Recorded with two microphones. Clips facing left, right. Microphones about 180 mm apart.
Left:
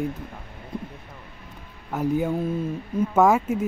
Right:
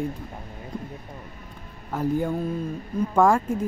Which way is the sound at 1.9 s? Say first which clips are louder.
Left 1 dB; 5° left (ahead or behind).